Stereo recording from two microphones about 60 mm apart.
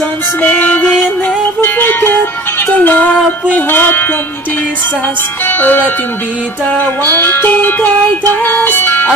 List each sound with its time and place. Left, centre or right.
0.4 s music: left
5.5 s music: left